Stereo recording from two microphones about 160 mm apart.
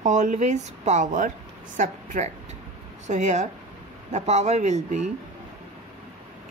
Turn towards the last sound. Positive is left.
turn(degrees=-45)  # may be behind; listen again after turning